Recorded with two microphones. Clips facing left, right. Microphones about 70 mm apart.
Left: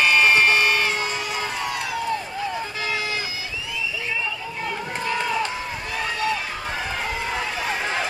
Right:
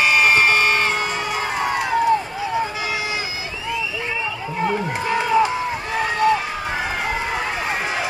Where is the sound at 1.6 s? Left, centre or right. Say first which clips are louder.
Right 6 dB; right.